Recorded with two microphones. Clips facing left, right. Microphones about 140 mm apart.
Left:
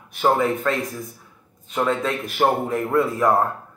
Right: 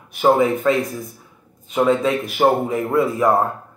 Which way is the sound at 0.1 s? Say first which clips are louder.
Right 4 dB; 10° right (ahead or behind).